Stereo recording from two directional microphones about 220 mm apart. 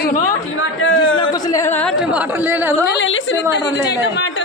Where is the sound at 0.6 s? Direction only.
60° left (ahead or behind).